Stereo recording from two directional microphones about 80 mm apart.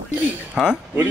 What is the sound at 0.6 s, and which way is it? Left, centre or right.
Speech, centre.